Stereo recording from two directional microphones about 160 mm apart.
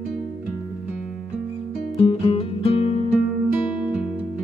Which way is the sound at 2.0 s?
35° left (ahead or behind).